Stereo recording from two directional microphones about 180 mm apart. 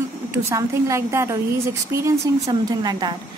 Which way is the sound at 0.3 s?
15° right (ahead or behind).